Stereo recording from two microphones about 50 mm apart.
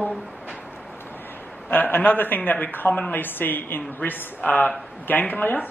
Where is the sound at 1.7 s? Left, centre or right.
Left.